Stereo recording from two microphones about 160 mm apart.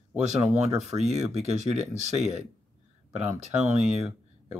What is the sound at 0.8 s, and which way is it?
Speech, 45° right (ahead or behind).